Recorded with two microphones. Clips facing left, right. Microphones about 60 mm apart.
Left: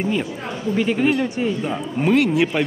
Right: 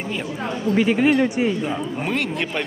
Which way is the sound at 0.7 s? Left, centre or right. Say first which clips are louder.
Right 1 dB; centre.